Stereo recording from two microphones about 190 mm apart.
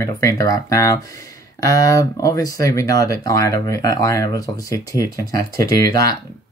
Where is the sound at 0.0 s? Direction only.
15° left (ahead or behind).